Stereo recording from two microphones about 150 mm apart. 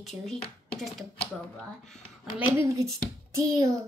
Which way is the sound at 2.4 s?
20° right (ahead or behind).